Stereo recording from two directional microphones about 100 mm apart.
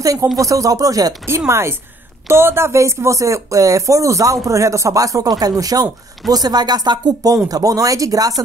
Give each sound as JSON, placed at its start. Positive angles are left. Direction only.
{"t": 0.0, "sound": "a woman's voice", "side_deg": -35}